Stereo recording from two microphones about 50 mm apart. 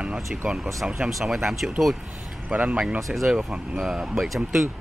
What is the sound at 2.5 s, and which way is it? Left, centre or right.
Speech, right.